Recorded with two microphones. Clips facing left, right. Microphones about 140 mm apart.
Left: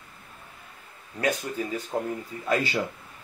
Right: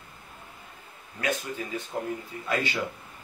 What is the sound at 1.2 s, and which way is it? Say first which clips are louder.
Speech: left 3 dB; 35° left (ahead or behind).